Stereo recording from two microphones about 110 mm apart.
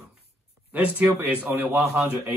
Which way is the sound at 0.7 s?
15° right (ahead or behind).